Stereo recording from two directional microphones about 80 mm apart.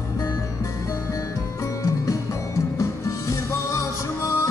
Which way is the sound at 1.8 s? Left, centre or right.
Left.